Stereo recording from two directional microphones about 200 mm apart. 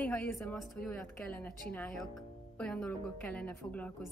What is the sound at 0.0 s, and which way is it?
A woman's voice, 5° left (ahead or behind).